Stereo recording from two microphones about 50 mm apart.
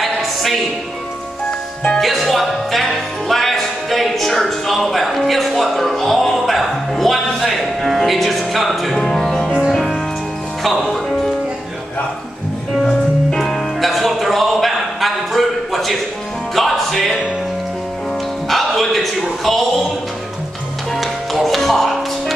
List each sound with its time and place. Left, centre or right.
0.0 s music: centre
1.9 s music: centre
10.6 s speech: centre
10.9 s music: centre
12.8 s music: centre
13.4 s music: centre
18.5 s a sound: centre
20.9 s music: centre